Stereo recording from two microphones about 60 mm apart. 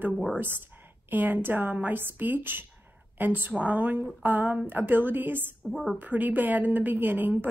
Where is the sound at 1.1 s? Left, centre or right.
Right.